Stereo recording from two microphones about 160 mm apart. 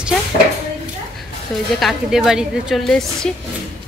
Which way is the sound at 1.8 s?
Centre (ahead or behind).